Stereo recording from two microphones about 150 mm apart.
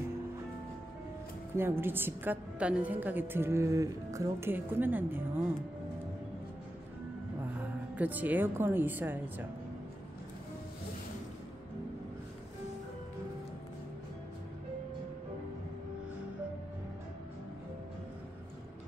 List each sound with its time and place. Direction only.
1.6 s a woman's voice: 15° right (ahead or behind)
7.9 s a woman's voice: 10° right (ahead or behind)